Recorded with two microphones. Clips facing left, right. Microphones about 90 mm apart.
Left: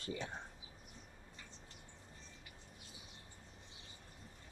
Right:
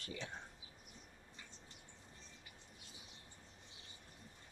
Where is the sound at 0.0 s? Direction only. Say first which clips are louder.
Left 5 dB; 30° left (ahead or behind).